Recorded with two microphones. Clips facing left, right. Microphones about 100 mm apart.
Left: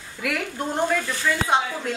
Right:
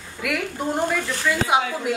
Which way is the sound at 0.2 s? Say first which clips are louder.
Right 1 dB; centre (ahead or behind).